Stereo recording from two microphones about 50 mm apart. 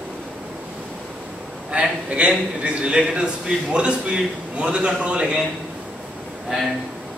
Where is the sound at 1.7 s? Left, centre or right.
Centre.